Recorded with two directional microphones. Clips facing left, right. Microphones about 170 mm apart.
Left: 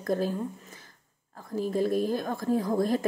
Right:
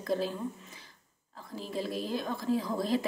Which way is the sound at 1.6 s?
50° left (ahead or behind).